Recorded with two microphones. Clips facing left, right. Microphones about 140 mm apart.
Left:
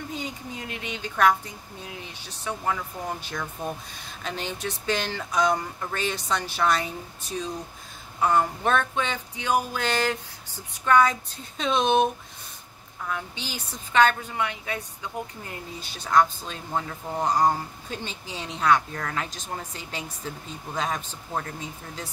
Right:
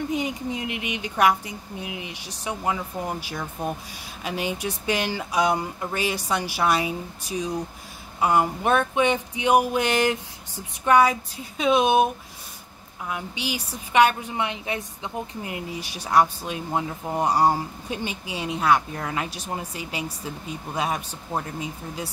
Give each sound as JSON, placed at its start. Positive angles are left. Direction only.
{"t": 0.1, "sound": "speech", "side_deg": -15}
{"t": 13.1, "sound": "speech", "side_deg": -10}